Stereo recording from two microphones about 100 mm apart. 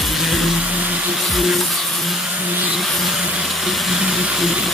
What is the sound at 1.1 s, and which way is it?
Music, centre (ahead or behind).